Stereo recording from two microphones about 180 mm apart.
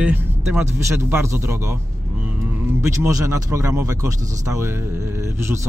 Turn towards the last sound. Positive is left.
turn(degrees=-15)  # may be behind; listen again after turning